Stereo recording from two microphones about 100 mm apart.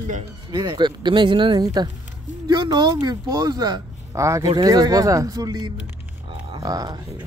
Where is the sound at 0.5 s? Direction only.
50° right (ahead or behind).